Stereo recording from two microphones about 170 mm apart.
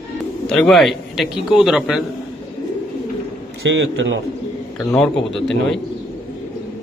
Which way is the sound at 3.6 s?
90° right.